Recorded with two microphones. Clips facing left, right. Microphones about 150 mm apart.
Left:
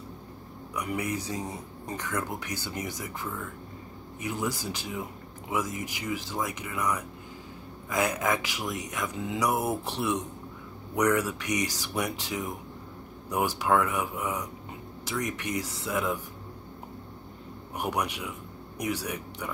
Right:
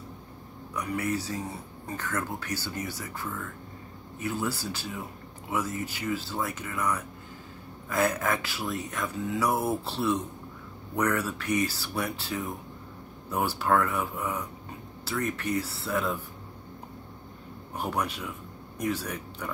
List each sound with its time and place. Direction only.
0.7 s speech: 15° left (ahead or behind)
17.7 s speech: 15° left (ahead or behind)